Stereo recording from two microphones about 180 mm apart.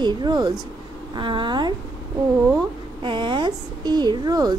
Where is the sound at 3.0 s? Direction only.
25° right (ahead or behind).